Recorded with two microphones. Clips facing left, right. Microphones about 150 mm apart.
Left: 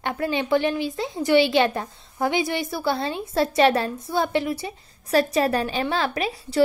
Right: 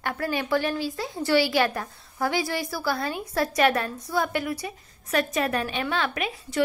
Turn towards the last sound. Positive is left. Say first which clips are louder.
# left 4 dB
turn(degrees=35)  # may be behind; listen again after turning